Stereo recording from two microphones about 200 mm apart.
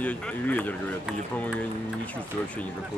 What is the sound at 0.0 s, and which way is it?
Speech, 5° left (ahead or behind).